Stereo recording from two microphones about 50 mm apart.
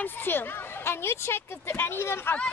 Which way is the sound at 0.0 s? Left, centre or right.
Left.